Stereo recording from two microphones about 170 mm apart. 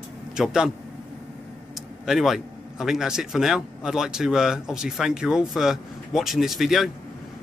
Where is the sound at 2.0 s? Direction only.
Centre (ahead or behind).